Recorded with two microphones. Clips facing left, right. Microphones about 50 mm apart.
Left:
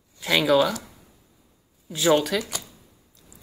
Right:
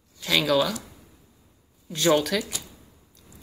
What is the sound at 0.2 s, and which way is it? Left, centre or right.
Speech, centre.